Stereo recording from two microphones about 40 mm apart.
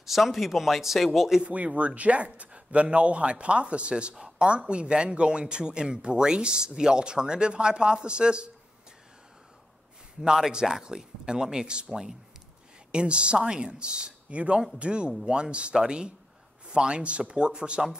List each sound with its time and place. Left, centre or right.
0.0 s speech: centre
1.5 s a man's voice: right
10.5 s speech: centre
12.9 s a man's voice: right